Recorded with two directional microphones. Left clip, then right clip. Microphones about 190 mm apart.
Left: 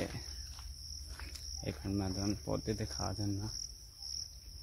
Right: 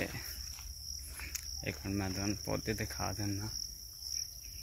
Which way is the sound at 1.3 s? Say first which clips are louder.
Right 3 dB; 10° left (ahead or behind).